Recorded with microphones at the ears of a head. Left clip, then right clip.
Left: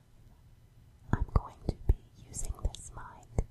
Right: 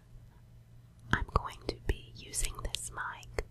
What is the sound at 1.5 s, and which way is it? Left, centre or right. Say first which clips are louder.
Whispering: right 3 dB; right.